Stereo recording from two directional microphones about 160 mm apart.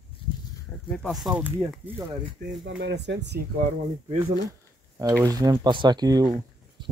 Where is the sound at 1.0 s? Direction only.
Centre (ahead or behind).